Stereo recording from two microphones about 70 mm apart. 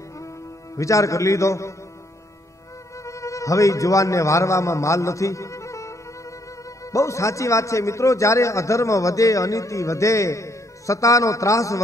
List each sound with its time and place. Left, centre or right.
0.7 s a man's voice: left
3.1 s a man's voice: left